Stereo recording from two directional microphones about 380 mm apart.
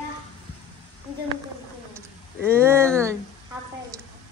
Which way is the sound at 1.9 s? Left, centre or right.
Centre.